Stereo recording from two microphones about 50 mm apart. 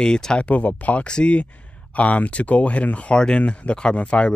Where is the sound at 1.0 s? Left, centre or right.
Left.